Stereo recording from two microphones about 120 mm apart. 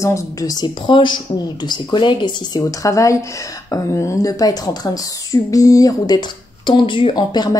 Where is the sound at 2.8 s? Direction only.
25° left (ahead or behind).